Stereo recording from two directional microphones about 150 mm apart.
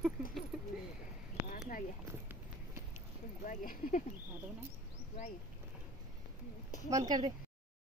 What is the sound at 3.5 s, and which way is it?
Speech, 60° left (ahead or behind).